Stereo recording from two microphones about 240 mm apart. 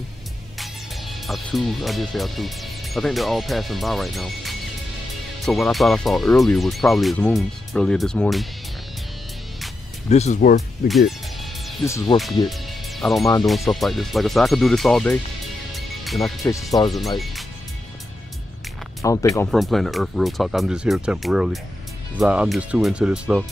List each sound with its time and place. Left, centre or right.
0.6 s speech: centre
10.0 s speech: left
10.9 s music: centre
11.8 s speech: centre
12.4 s music: centre
13.5 s speech: centre
15.7 s music: centre
16.7 s speech: centre
18.9 s speech: centre
19.5 s speech: centre